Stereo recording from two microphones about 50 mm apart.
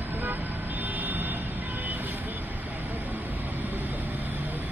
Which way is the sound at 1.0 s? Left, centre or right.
Right.